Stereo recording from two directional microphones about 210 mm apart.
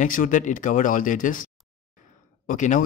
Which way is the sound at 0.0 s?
40° left (ahead or behind).